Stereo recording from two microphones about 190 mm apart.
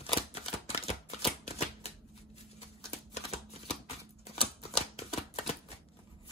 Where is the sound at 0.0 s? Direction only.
30° left (ahead or behind).